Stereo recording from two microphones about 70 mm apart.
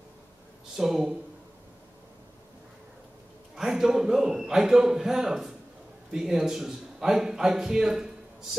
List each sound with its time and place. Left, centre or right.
0.7 s speech: centre
3.5 s a sound: centre
6.1 s a man's voice: centre